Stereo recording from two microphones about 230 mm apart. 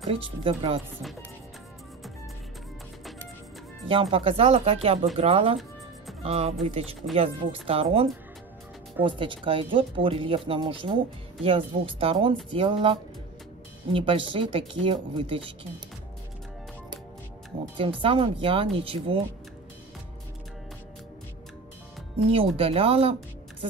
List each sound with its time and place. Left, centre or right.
0.0 s speech: right
3.8 s speech: right
13.9 s speech: right
17.7 s speech: right
22.3 s speech: right